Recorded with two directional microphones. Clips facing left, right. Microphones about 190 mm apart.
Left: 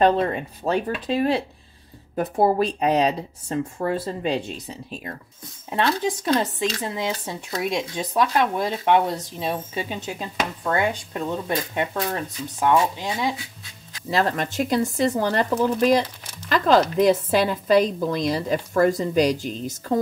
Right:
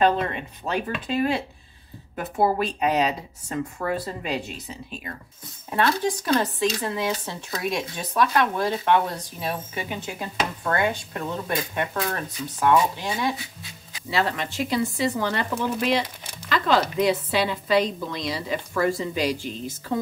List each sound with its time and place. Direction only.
0.0 s speech: 35° left (ahead or behind)
6.4 s speech: 20° left (ahead or behind)
14.1 s a woman's voice: 45° left (ahead or behind)